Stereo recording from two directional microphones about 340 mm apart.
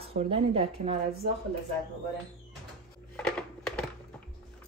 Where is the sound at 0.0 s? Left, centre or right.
Centre.